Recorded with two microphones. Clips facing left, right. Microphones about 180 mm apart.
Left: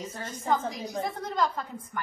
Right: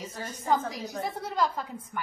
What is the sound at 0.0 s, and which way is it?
A woman's voice, 10° right (ahead or behind).